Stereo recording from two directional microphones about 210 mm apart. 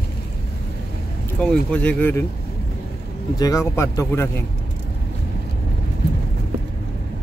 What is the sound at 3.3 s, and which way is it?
Speech, 15° left (ahead or behind).